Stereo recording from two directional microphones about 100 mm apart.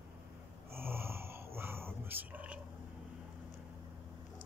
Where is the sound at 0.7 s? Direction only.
25° right (ahead or behind).